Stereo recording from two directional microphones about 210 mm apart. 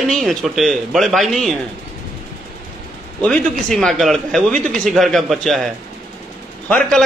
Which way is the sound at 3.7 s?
Centre (ahead or behind).